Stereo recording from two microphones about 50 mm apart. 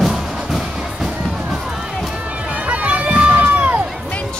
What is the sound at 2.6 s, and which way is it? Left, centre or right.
Run, right.